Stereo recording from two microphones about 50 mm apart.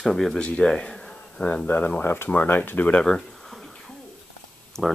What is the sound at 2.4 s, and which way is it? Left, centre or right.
Speech, left.